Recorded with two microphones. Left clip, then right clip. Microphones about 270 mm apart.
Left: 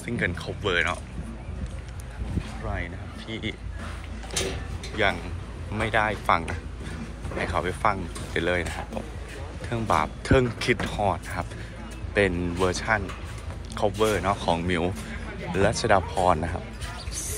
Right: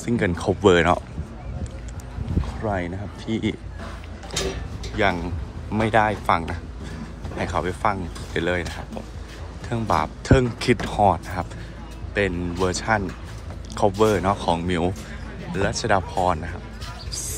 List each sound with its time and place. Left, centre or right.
0.0 s speech: centre
2.6 s speech: right
4.9 s speech: centre
17.1 s music: centre